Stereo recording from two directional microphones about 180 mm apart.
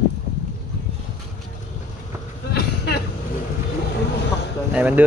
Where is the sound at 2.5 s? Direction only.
60° left (ahead or behind).